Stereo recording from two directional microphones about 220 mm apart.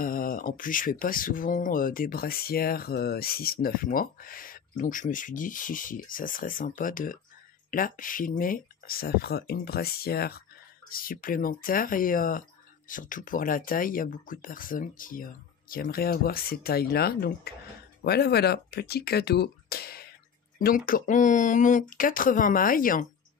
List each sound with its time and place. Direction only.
0.0 s speech: 40° left (ahead or behind)